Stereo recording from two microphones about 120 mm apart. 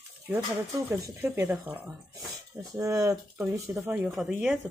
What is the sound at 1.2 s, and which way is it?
A woman's voice, 15° right (ahead or behind).